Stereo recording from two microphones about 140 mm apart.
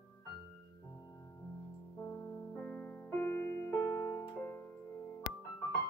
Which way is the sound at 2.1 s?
10° left (ahead or behind).